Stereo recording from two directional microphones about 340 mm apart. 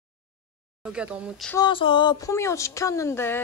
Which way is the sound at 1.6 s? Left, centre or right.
Centre.